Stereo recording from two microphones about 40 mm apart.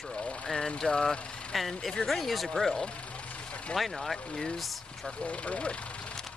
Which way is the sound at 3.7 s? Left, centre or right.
Centre.